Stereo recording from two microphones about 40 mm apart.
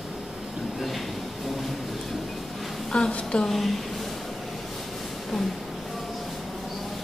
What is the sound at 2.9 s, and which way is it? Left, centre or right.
Speech, centre.